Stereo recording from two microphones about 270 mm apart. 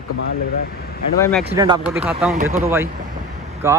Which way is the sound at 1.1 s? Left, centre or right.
Centre.